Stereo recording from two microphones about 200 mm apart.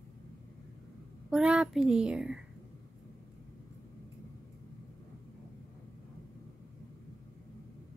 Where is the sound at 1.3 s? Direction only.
5° right (ahead or behind).